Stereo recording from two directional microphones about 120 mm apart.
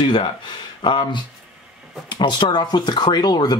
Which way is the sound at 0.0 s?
40° left (ahead or behind).